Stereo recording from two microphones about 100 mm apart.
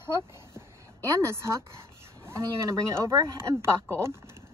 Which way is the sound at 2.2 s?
30° right (ahead or behind).